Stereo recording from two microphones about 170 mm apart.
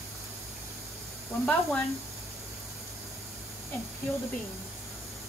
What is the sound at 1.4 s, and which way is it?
Speech, 5° left (ahead or behind).